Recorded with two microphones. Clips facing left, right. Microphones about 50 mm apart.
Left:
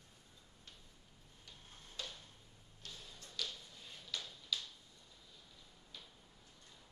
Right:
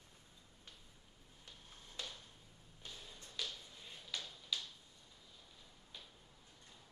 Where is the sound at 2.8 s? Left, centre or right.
Right.